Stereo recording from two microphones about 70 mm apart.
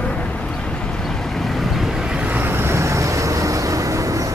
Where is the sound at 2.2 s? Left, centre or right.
Right.